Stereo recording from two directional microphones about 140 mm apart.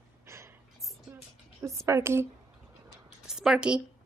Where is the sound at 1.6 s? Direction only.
20° right (ahead or behind).